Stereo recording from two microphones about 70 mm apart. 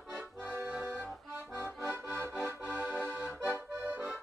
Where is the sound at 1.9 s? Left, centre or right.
Right.